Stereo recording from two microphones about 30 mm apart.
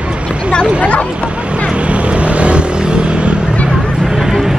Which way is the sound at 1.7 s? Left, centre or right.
Right.